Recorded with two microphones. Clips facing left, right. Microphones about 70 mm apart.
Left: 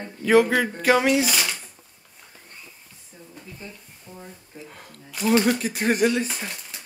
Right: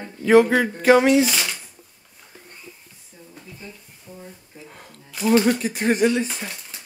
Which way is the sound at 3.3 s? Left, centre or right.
Centre.